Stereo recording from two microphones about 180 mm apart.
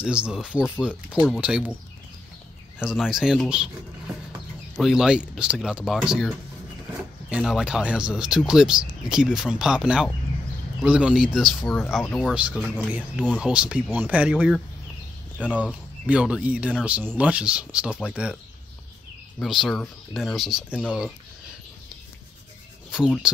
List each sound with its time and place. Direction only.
0.0 s speech: 5° right (ahead or behind)
2.8 s speech: 5° right (ahead or behind)
4.7 s speech: centre (ahead or behind)
19.4 s speech: centre (ahead or behind)
22.8 s speech: 5° right (ahead or behind)